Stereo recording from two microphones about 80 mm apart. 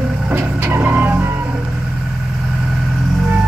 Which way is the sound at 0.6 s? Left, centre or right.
Right.